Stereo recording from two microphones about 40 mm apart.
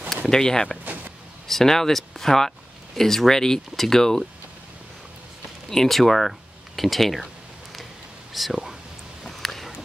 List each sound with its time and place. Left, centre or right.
0.3 s speech: centre
5.7 s speech: centre
8.3 s speech: centre
9.2 s a sound: centre